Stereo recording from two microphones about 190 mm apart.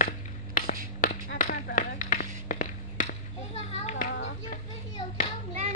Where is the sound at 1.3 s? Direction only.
45° left (ahead or behind).